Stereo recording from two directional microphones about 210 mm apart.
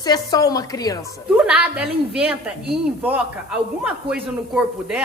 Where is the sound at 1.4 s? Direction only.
5° right (ahead or behind).